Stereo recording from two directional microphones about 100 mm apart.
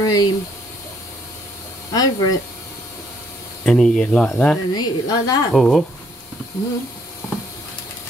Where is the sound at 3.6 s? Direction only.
10° left (ahead or behind).